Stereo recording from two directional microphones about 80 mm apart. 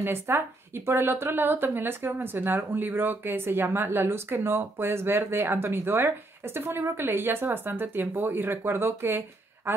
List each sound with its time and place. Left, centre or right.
0.0 s speech: right